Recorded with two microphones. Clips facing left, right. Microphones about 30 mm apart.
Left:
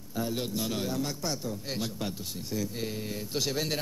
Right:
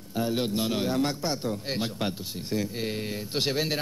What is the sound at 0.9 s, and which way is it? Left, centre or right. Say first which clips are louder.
A man's voice: right 5 dB; right.